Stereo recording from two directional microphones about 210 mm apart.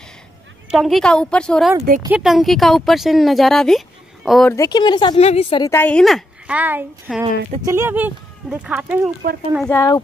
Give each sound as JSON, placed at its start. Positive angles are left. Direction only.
{"t": 0.7, "sound": "speech", "side_deg": 0}
{"t": 4.5, "sound": "speech", "side_deg": 15}
{"t": 5.7, "sound": "a woman's voice", "side_deg": 10}
{"t": 9.7, "sound": "speech", "side_deg": 15}